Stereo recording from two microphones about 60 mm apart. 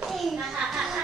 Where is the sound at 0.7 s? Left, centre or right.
Centre.